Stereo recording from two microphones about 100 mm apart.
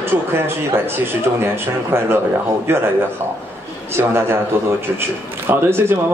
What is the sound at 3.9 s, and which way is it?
Speech, 25° right (ahead or behind).